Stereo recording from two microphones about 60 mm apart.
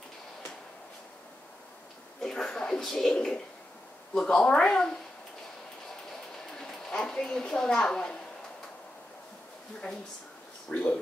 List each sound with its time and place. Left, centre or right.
2.2 s speech: centre
6.5 s a woman's voice: centre
10.7 s speech: centre